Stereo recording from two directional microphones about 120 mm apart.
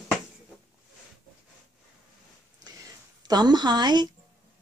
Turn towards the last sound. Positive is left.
turn(degrees=-35)  # may be behind; listen again after turning